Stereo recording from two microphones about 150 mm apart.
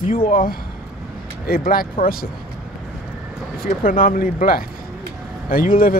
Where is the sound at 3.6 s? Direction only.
70° left (ahead or behind).